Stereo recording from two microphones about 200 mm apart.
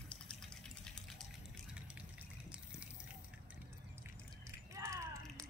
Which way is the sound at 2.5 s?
5° right (ahead or behind).